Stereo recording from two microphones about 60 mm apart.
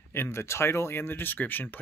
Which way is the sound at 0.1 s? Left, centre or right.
Left.